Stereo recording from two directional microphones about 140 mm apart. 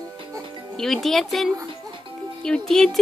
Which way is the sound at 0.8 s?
Centre (ahead or behind).